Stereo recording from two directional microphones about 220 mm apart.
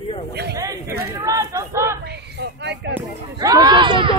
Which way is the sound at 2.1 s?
50° right (ahead or behind).